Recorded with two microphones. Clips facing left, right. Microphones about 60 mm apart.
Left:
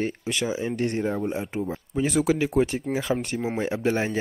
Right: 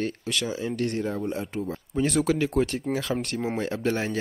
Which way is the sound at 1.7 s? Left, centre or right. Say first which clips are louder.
Even; centre.